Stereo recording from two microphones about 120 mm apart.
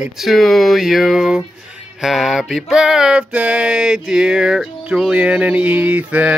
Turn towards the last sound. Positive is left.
turn(degrees=-10)  # may be behind; listen again after turning